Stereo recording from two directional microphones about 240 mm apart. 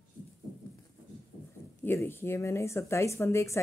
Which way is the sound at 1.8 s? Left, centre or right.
Centre.